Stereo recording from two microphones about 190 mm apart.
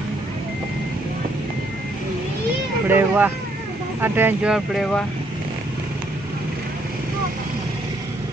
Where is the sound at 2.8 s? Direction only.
10° right (ahead or behind).